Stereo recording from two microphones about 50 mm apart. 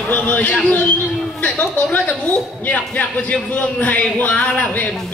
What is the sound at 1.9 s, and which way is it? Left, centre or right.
A man's voice, left.